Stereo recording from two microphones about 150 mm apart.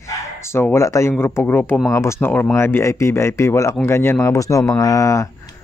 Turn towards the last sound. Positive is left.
turn(degrees=20)  # may be behind; listen again after turning